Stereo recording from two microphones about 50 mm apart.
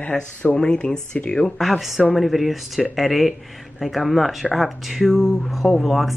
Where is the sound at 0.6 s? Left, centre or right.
Centre.